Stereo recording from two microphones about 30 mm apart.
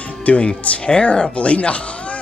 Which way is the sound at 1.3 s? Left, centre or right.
Left.